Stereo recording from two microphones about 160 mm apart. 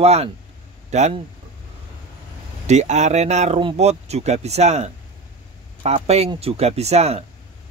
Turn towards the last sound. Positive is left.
turn(degrees=-40)  # may be behind; listen again after turning